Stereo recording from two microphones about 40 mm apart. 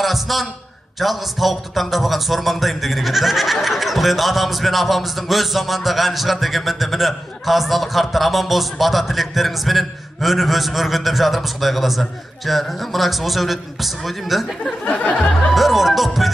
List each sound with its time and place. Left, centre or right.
0.0 s a sound: centre
0.9 s speech: centre
14.9 s music: left
15.5 s music: centre